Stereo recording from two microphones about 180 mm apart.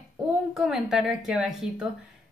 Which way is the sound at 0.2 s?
5° right (ahead or behind).